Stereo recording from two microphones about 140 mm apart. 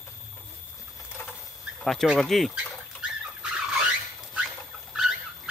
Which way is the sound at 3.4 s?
5° right (ahead or behind).